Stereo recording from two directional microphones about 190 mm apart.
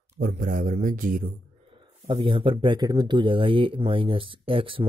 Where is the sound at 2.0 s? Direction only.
25° right (ahead or behind).